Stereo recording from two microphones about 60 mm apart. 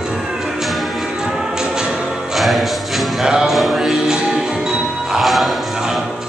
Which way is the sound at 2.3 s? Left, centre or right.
Centre.